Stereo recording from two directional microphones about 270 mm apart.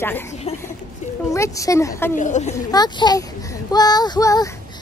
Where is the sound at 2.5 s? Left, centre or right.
Centre.